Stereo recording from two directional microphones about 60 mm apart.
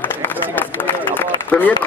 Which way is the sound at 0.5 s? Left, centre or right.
Left.